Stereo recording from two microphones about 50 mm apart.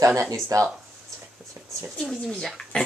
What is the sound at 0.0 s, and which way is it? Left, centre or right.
Speech, right.